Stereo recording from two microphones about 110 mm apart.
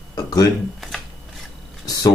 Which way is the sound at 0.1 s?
35° left (ahead or behind).